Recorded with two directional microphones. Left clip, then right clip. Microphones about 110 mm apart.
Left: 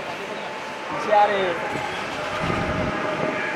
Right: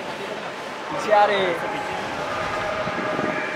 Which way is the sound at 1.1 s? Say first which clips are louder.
Right 1 dB; 25° right (ahead or behind).